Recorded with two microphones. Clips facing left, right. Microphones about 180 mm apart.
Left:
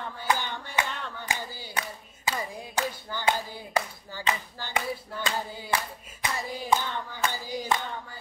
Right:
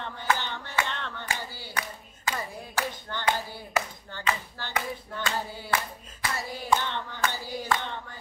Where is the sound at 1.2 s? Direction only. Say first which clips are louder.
Left 1 dB; 15° left (ahead or behind).